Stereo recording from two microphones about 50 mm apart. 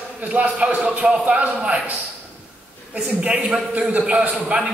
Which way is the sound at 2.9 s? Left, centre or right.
Centre.